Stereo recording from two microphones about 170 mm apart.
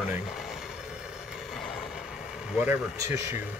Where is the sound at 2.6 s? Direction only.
15° right (ahead or behind).